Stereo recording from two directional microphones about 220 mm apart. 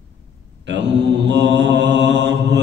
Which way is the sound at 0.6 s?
50° right (ahead or behind).